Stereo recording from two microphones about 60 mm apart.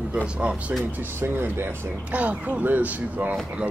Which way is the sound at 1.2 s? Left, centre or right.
Right.